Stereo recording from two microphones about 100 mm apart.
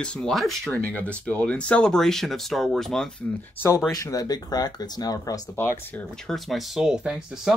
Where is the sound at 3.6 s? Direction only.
30° left (ahead or behind).